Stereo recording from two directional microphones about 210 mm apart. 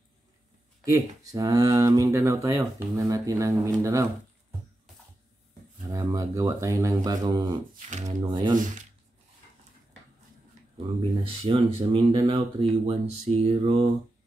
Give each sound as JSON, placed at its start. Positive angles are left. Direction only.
{"t": 0.8, "sound": "speech", "side_deg": -15}
{"t": 5.9, "sound": "speech", "side_deg": -15}
{"t": 11.0, "sound": "speech", "side_deg": -25}